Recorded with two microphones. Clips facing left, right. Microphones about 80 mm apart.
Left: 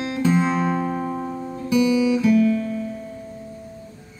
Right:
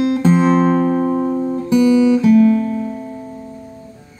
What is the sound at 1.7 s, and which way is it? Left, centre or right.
Guitar, right.